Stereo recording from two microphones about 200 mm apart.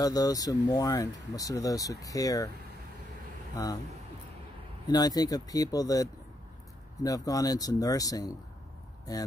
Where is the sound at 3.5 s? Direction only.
20° left (ahead or behind).